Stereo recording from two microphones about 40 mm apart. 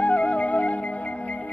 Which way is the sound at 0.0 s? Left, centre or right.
Left.